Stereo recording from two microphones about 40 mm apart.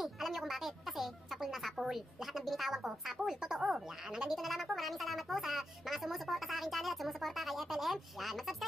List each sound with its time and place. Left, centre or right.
0.0 s music: centre
3.3 s speech: centre
4.4 s a woman's voice: centre